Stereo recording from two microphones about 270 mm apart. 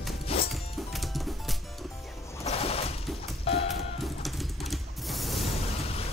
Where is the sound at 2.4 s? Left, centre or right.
Left.